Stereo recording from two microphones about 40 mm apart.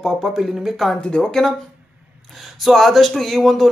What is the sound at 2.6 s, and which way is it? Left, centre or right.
Speech, centre.